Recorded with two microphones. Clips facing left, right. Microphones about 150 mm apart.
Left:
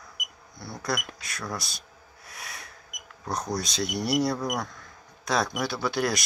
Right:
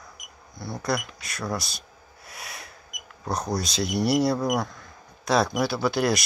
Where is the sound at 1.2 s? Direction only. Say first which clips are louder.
Right 4 dB; centre (ahead or behind).